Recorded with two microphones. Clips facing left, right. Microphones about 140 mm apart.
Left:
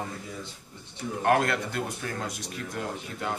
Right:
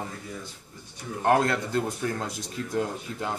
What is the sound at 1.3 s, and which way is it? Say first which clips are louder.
Speech: right 2 dB; 25° right (ahead or behind).